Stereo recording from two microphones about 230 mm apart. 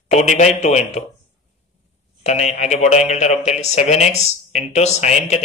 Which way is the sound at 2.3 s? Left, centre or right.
Left.